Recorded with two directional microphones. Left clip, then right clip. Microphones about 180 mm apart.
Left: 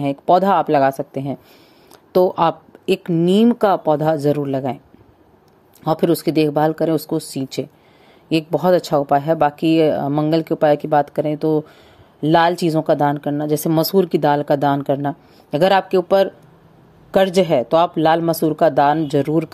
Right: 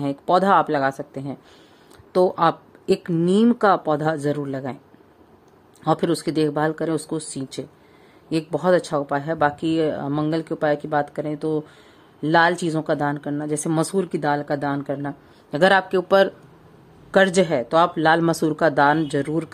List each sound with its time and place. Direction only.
0.3 s speech: 10° left (ahead or behind)
3.1 s speech: 5° left (ahead or behind)
5.9 s speech: 15° left (ahead or behind)